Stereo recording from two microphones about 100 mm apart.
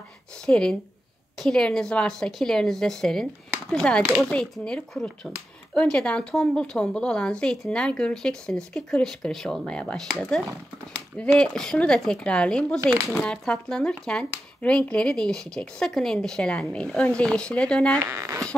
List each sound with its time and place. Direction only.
0.5 s a woman's voice: 5° left (ahead or behind)
18.0 s speech: 30° right (ahead or behind)